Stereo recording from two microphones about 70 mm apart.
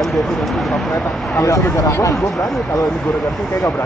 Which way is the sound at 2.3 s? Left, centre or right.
Centre.